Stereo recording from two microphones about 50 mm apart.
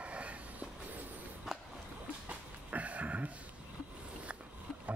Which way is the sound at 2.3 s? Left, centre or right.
Right.